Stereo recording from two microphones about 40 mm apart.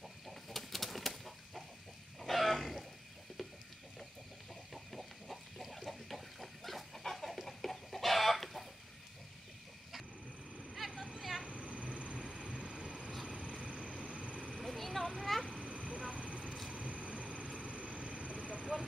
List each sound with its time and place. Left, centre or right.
0.5 s bird: centre
2.2 s grunt: centre
4.9 s pig: centre
11.0 s vehicle: centre
11.4 s a sound: right
12.2 s train: centre
13.3 s vehicle: centre
14.6 s a sound: centre
15.8 s vehicle: left
16.1 s vehicle: right
16.4 s vehicle: centre
16.7 s vehicle: right